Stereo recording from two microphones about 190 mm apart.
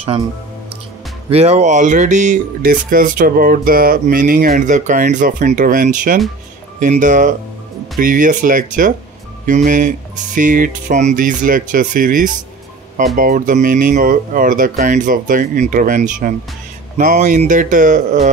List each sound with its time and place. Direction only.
1.3 s speech: 35° right (ahead or behind)